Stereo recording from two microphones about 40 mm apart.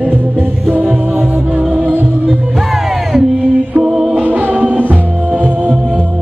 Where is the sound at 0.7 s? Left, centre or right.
Right.